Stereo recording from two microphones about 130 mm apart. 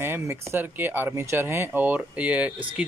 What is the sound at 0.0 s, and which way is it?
Speech, 20° right (ahead or behind).